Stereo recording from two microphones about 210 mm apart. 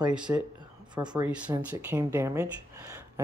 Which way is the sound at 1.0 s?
20° right (ahead or behind).